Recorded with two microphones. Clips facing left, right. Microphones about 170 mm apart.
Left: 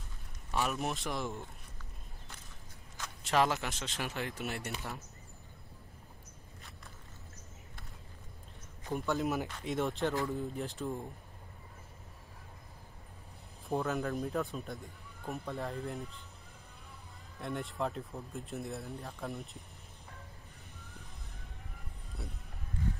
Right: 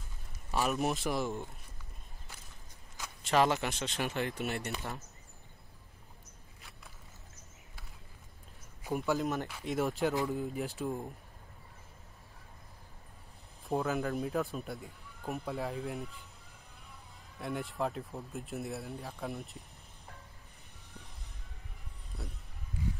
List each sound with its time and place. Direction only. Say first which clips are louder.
0.5 s speech: right 3 dB; 5° right (ahead or behind)
3.3 s speech: right 2 dB; centre (ahead or behind)
8.8 s speech: right 1 dB; 5° right (ahead or behind)
13.7 s speech: right 1 dB; centre (ahead or behind)
15.2 s speech: right 2 dB; 15° right (ahead or behind)
15.5 s speech: right 2 dB; centre (ahead or behind)
17.4 s speech: right 1 dB; centre (ahead or behind)